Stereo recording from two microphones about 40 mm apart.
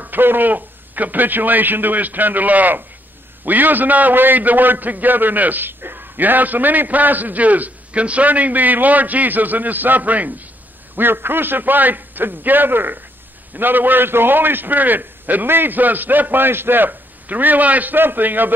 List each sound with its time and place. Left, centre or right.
0.0 s a man's voice: right
11.0 s a man's voice: right
15.4 s a man's voice: right
17.9 s a man's voice: right